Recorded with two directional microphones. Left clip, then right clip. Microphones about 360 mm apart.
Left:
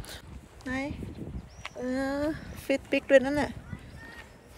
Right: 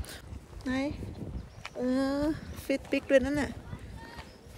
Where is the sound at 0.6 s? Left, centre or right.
Centre.